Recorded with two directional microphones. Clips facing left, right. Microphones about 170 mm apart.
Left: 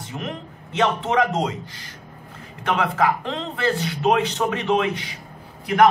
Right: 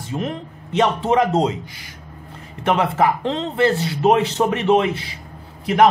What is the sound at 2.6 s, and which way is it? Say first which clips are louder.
A man's voice: right 3 dB; 25° right (ahead or behind).